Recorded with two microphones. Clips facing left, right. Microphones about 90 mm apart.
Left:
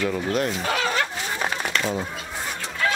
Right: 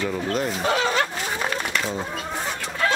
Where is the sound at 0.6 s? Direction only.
30° right (ahead or behind).